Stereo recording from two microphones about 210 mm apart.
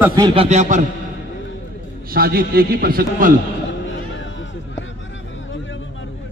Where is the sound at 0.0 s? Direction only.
15° right (ahead or behind).